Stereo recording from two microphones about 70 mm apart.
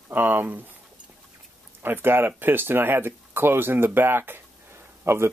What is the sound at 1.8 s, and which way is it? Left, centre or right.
Speech, right.